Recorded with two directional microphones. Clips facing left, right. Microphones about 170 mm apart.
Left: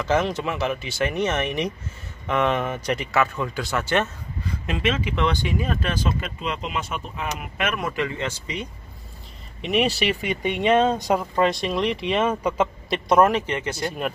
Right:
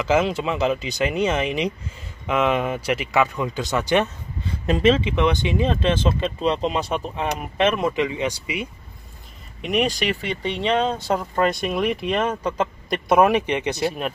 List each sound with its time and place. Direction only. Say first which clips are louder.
0.1 s speech: right 2 dB; 10° right (ahead or behind)
4.5 s speech: right 7 dB; 35° right (ahead or behind)
5.1 s speech: right 3 dB; 20° right (ahead or behind)
9.6 s speech: even; centre (ahead or behind)
11.3 s speech: even; centre (ahead or behind)
13.1 s speech: right 1 dB; 10° right (ahead or behind)